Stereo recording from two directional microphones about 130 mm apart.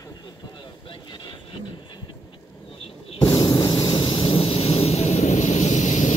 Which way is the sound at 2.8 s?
50° left (ahead or behind).